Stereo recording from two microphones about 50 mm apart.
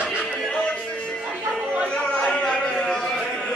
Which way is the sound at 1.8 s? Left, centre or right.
Left.